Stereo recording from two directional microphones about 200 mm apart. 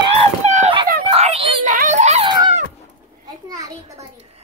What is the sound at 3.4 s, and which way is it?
Speech, 20° right (ahead or behind).